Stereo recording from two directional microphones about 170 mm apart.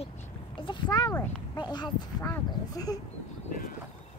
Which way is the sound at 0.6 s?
30° left (ahead or behind).